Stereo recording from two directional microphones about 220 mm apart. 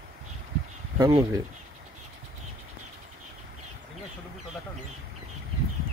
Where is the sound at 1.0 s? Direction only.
15° right (ahead or behind).